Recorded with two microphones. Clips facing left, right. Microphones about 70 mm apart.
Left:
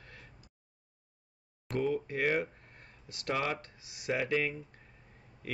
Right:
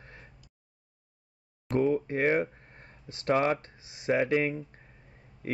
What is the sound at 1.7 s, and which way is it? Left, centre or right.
Speech, right.